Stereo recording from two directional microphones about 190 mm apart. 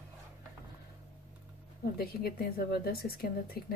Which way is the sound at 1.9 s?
50° left (ahead or behind).